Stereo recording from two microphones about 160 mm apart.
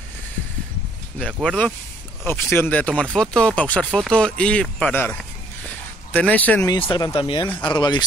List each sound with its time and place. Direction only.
1.2 s speech: 5° left (ahead or behind)
6.1 s speech: 10° left (ahead or behind)
6.7 s speech: 25° left (ahead or behind)